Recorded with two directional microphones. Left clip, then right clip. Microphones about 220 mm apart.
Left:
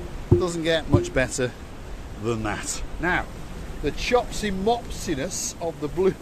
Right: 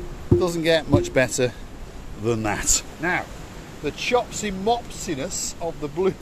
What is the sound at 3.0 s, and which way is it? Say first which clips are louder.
Speech: left 3 dB; 5° right (ahead or behind).